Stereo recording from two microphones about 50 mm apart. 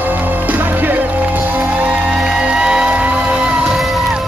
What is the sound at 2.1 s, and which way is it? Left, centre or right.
Music, centre.